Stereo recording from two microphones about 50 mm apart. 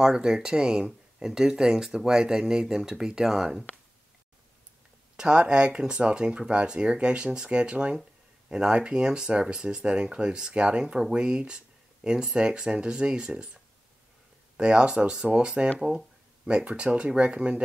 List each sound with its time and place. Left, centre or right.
0.0 s speech: centre
5.1 s speech: centre
14.6 s speech: centre